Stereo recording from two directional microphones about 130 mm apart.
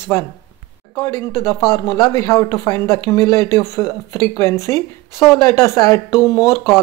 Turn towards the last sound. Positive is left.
turn(degrees=25)  # may be behind; listen again after turning